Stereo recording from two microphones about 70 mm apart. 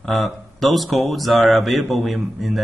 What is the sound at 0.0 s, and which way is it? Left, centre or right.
Speech, centre.